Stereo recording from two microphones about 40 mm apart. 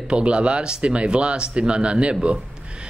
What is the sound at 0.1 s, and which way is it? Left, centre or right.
Speech, right.